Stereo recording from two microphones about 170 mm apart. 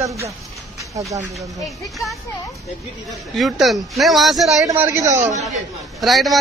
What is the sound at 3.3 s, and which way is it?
Speech, centre (ahead or behind).